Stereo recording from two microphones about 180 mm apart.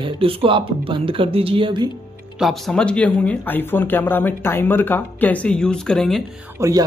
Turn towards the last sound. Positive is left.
turn(degrees=-20)  # may be behind; listen again after turning